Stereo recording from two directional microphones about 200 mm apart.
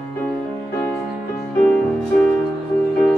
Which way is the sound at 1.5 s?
5° left (ahead or behind).